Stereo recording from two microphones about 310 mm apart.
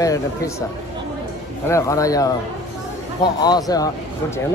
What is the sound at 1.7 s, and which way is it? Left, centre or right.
Speech, centre.